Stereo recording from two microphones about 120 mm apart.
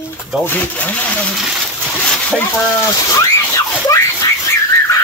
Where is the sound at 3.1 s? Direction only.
25° left (ahead or behind).